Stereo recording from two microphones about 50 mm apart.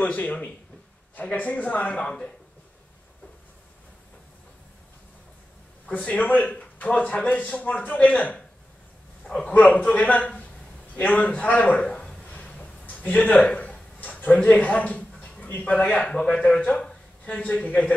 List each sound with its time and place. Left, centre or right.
0.0 s a man's voice: left
2.0 s speech: centre
5.9 s a man's voice: left
9.4 s a man's voice: left
12.2 s a sound: left
13.7 s a sound: left
15.6 s a man's voice: left
16.1 s a man's voice: centre